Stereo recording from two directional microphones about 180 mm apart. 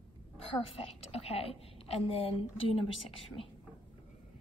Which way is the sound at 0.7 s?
35° left (ahead or behind).